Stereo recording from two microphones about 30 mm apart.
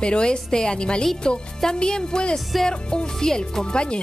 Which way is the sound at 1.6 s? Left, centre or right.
Left.